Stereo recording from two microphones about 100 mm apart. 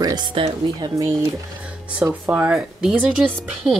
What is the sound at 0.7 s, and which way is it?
Speech, 40° right (ahead or behind).